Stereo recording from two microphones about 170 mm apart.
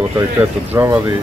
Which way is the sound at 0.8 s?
15° right (ahead or behind).